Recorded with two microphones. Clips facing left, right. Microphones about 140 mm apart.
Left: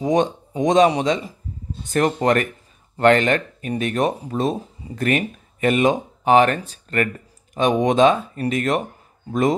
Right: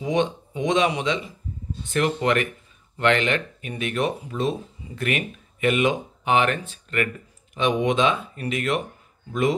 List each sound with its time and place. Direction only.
0.0 s speech: 40° left (ahead or behind)